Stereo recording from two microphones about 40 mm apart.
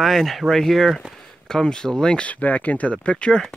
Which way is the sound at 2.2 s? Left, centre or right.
Left.